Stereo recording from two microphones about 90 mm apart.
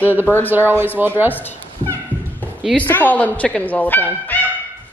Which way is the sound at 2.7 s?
20° left (ahead or behind).